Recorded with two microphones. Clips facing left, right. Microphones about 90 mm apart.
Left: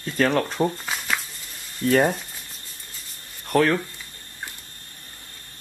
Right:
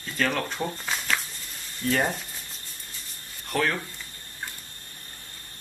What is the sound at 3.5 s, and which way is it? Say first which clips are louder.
Speech: left 7 dB; 40° left (ahead or behind).